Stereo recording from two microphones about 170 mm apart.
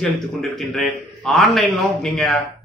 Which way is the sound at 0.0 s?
Centre (ahead or behind).